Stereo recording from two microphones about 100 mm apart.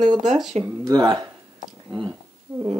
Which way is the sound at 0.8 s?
40° right (ahead or behind).